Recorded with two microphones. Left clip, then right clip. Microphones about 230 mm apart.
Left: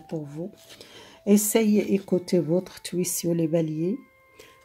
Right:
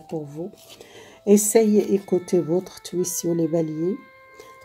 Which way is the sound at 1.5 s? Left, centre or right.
Left.